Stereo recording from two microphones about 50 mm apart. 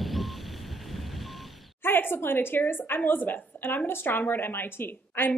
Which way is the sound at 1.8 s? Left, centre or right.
Left.